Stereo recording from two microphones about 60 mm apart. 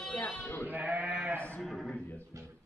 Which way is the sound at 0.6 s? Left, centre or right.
Right.